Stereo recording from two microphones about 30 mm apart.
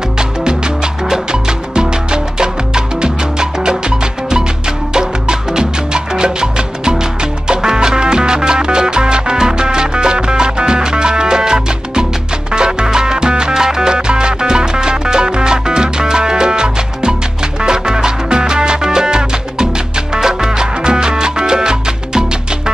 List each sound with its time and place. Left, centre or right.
1.1 s music: right
4.9 s music: right